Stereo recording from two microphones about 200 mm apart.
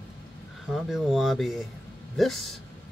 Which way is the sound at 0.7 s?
Centre (ahead or behind).